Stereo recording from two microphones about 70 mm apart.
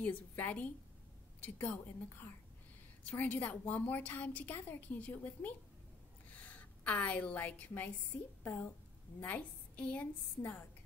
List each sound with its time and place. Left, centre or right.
0.0 s a woman's voice: left
6.8 s a woman's voice: left
9.2 s a woman's voice: left